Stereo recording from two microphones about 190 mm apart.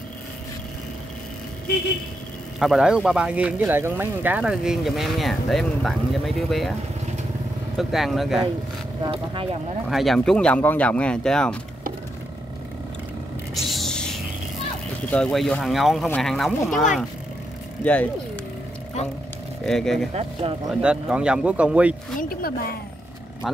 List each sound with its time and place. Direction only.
2.6 s speech: 5° right (ahead or behind)
7.7 s speech: centre (ahead or behind)
9.0 s speech: 25° right (ahead or behind)
9.8 s speech: centre (ahead or behind)
13.7 s music: centre (ahead or behind)
15.0 s speech: 5° left (ahead or behind)
17.8 s speech: 5° left (ahead or behind)
19.6 s speech: centre (ahead or behind)
22.3 s a woman's voice: 50° left (ahead or behind)